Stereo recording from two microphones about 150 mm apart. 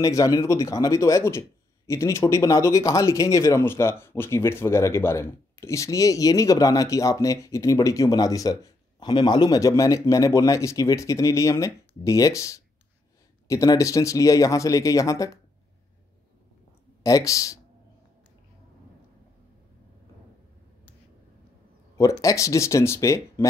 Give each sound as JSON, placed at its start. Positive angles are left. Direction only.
{"t": 0.0, "sound": "speech", "side_deg": 25}
{"t": 17.0, "sound": "speech", "side_deg": 20}
{"t": 22.2, "sound": "speech", "side_deg": 20}